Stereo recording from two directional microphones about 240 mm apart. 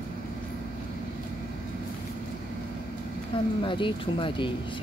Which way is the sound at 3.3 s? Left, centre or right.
Left.